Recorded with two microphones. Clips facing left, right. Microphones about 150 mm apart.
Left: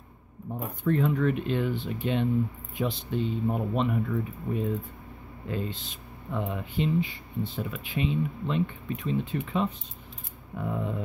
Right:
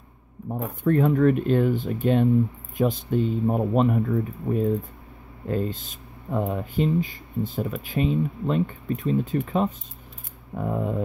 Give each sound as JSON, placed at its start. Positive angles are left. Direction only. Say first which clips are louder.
{"t": 0.5, "sound": "speech", "louder": "right 4 dB", "side_deg": -50}